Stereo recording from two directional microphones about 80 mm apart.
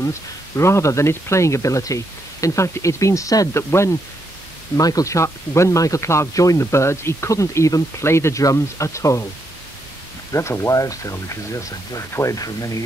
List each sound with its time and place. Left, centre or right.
0.0 s speech: left
4.7 s speech: left
10.3 s speech: left